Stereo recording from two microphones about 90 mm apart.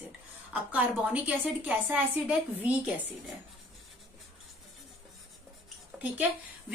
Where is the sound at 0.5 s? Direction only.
15° right (ahead or behind).